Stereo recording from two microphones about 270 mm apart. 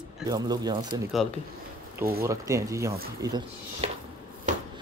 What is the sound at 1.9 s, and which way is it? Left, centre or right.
Speech, centre.